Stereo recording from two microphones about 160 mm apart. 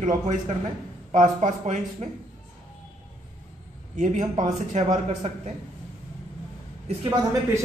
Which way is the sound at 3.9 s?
50° right (ahead or behind).